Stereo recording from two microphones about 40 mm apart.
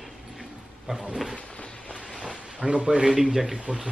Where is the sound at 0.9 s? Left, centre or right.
Right.